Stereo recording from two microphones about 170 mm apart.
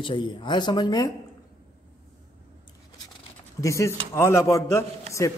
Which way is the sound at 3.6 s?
20° left (ahead or behind).